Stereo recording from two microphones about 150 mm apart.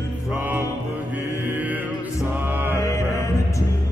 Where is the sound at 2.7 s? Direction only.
20° left (ahead or behind).